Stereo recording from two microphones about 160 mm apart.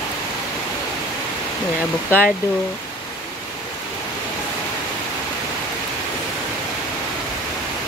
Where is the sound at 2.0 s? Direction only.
10° left (ahead or behind).